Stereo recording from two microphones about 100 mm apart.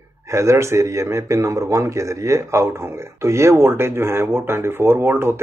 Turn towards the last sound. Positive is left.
turn(degrees=-25)  # may be behind; listen again after turning